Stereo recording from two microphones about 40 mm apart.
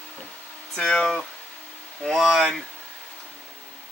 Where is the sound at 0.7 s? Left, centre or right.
Left.